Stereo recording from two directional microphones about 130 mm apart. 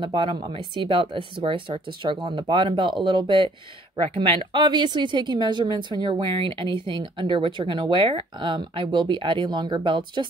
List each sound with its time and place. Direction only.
0.0 s speech: 40° right (ahead or behind)